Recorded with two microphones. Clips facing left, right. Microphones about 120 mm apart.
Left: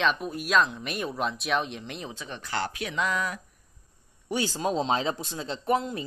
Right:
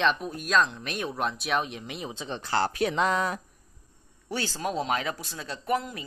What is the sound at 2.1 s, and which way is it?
Speech, 25° right (ahead or behind).